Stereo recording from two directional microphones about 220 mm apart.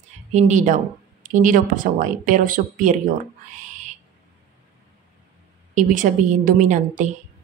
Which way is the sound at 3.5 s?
35° right (ahead or behind).